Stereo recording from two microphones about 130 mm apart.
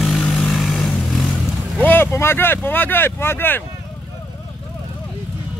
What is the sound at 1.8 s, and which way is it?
Speech, 15° left (ahead or behind).